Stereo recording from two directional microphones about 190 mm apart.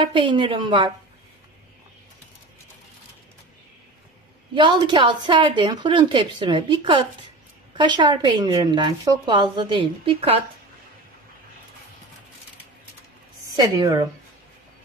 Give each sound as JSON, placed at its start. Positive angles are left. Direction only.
{"t": 0.0, "sound": "speech", "side_deg": -25}
{"t": 4.6, "sound": "speech", "side_deg": -25}
{"t": 13.6, "sound": "speech", "side_deg": -20}